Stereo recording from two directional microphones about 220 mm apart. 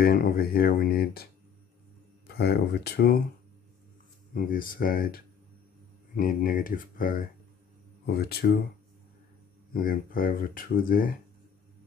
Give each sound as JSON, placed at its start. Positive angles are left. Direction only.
{"t": 0.0, "sound": "speech", "side_deg": 45}
{"t": 4.3, "sound": "speech", "side_deg": 40}
{"t": 9.8, "sound": "speech", "side_deg": 40}